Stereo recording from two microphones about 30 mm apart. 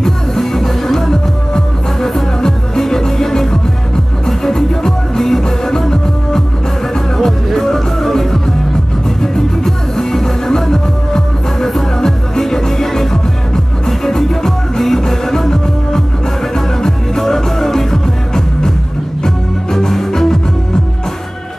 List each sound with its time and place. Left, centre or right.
0.0 s music: centre
7.5 s music: centre